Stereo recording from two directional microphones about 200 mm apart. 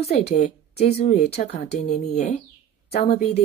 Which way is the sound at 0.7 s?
35° left (ahead or behind).